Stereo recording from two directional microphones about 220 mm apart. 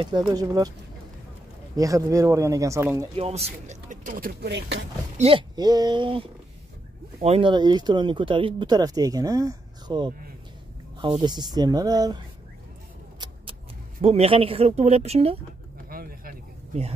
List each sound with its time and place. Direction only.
0.0 s speech: 20° right (ahead or behind)
1.8 s speech: 15° right (ahead or behind)
3.2 s speech: 30° right (ahead or behind); by 4.8 s 50° right (ahead or behind)
5.1 s speech: 25° right (ahead or behind)
14.0 s speech: 25° right (ahead or behind)
15.9 s a sound: 40° right (ahead or behind)